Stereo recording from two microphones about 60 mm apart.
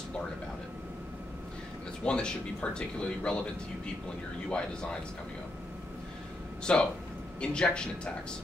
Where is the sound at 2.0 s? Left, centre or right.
Centre.